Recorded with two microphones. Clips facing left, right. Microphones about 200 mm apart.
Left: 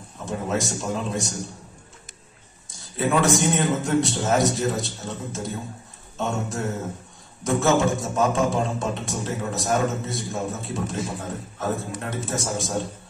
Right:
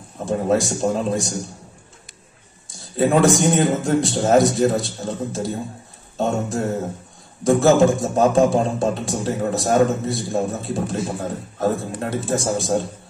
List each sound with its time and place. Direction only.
0.2 s a man's voice: 35° right (ahead or behind)
3.0 s a man's voice: 35° right (ahead or behind)